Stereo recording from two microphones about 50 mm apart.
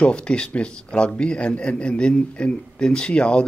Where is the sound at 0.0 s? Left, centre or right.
Centre.